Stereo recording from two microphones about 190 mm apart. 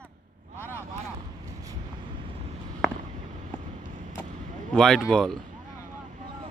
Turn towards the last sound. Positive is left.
turn(degrees=0)  # may be behind; listen again after turning